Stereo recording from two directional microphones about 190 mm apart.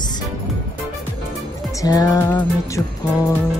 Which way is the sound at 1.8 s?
20° left (ahead or behind).